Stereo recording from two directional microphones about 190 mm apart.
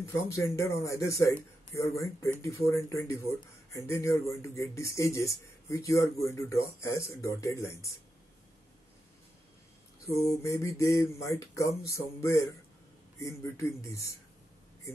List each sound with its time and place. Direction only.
0.0 s speech: 15° left (ahead or behind)
10.4 s speech: 15° left (ahead or behind)